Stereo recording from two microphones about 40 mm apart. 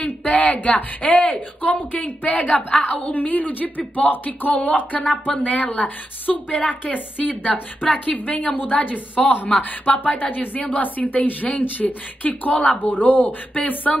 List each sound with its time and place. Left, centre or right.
0.0 s a woman's voice: left